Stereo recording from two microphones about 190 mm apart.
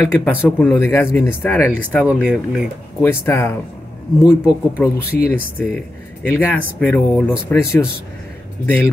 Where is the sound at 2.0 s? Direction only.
5° right (ahead or behind).